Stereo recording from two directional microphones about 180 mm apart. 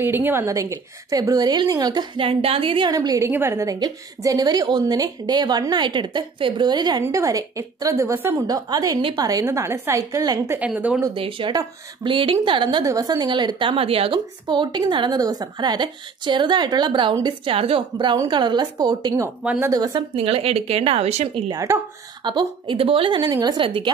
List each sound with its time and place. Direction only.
0.0 s a woman's voice: 10° right (ahead or behind)
10.6 s speech: 5° right (ahead or behind)
11.1 s a woman's voice: 30° right (ahead or behind)
19.4 s speech: 5° right (ahead or behind)
19.7 s speech: 20° right (ahead or behind)
21.5 s a woman's voice: 20° right (ahead or behind)